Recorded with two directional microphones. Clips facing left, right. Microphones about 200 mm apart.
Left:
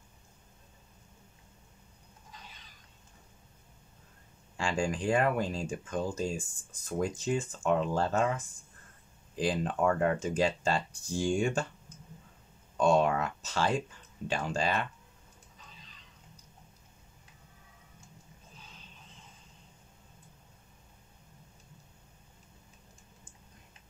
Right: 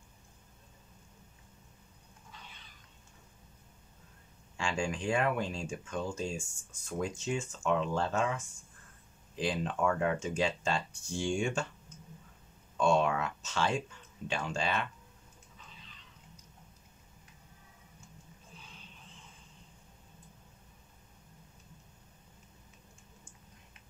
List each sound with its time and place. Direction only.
4.6 s speech: 35° left (ahead or behind)
12.7 s speech: 40° left (ahead or behind)